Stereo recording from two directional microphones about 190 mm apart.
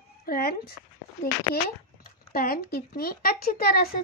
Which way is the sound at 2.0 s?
50° left (ahead or behind).